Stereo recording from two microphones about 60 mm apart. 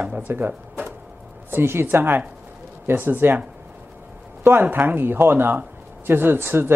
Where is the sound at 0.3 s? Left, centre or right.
Right.